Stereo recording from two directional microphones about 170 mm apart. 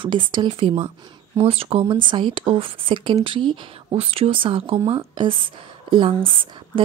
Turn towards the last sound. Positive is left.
turn(degrees=-30)  # may be behind; listen again after turning